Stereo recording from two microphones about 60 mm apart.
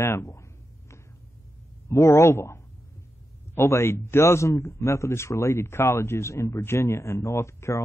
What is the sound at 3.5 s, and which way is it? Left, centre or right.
A man's voice, left.